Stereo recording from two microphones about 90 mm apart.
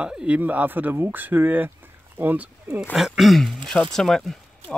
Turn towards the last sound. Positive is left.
turn(degrees=5)  # may be behind; listen again after turning